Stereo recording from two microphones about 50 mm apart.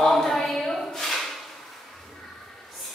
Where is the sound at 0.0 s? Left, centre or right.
Centre.